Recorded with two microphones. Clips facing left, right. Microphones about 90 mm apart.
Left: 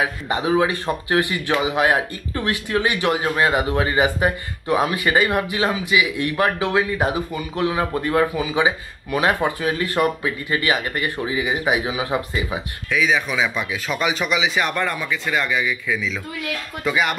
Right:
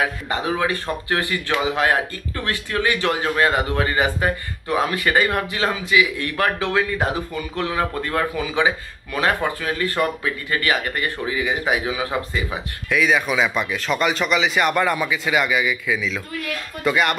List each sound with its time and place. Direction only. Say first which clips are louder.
0.0 s a man's voice: left 1 dB; 15° left (ahead or behind)
12.9 s speech: right 1 dB; centre (ahead or behind)